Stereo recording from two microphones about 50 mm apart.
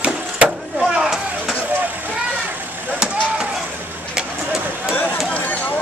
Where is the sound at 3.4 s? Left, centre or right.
Centre.